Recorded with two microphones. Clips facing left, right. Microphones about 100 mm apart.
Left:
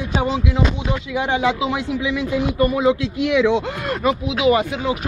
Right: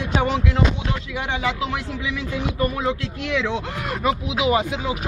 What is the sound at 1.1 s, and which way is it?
Speech, 10° left (ahead or behind).